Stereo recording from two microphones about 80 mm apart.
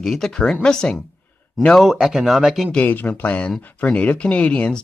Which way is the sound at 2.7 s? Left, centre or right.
Left.